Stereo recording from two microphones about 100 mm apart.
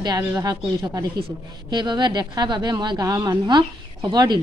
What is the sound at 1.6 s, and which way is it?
A woman's voice, 45° right (ahead or behind).